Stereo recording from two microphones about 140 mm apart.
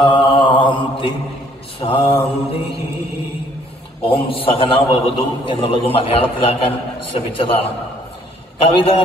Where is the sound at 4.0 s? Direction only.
40° left (ahead or behind).